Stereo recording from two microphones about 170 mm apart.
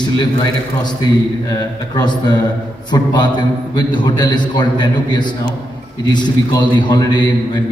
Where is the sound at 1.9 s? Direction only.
25° left (ahead or behind).